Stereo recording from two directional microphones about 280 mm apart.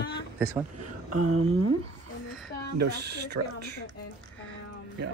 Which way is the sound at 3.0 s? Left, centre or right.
Right.